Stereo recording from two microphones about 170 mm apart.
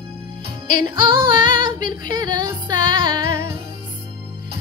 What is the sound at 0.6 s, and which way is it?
Music, 50° left (ahead or behind).